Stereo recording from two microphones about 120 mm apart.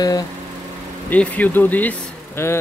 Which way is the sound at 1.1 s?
15° left (ahead or behind).